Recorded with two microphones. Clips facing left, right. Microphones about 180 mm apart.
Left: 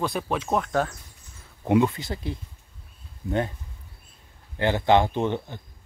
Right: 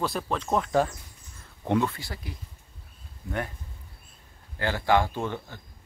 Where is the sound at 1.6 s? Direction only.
15° left (ahead or behind).